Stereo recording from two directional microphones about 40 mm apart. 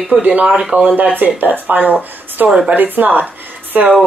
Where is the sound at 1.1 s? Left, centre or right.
Right.